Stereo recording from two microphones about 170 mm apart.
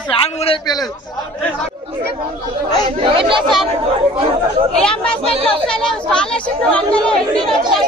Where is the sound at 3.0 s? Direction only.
30° right (ahead or behind).